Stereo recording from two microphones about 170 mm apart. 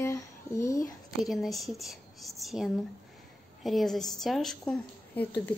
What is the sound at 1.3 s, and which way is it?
A woman's voice, centre (ahead or behind).